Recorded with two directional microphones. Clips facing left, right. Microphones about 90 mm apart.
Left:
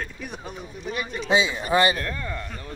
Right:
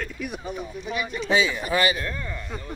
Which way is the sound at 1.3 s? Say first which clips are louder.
Left 1 dB; 20° left (ahead or behind).